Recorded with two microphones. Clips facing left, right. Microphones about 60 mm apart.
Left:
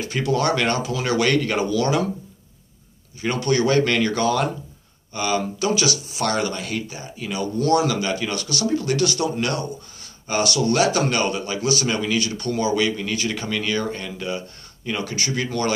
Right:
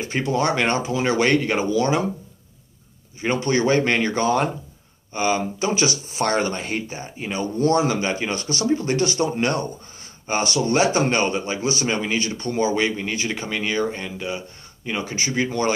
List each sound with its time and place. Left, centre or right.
0.0 s a man's voice: right
3.2 s a man's voice: right